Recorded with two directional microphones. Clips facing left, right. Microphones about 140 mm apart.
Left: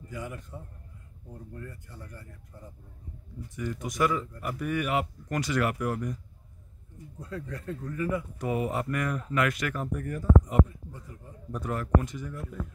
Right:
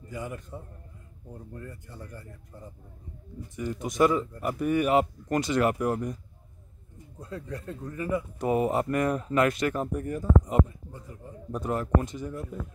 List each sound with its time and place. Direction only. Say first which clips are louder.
0.1 s a man's voice: right 2 dB; 25° right (ahead or behind)
1.5 s speech: right 1 dB; 25° right (ahead or behind)
3.4 s speech: right 2 dB; 25° right (ahead or behind)
7.2 s speech: even; 25° right (ahead or behind)